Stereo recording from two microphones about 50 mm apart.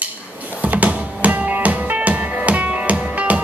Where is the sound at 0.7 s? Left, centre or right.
Right.